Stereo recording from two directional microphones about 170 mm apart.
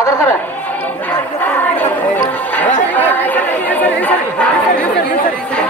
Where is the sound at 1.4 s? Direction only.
10° left (ahead or behind).